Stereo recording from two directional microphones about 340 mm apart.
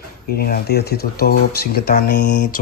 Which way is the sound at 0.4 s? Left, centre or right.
Left.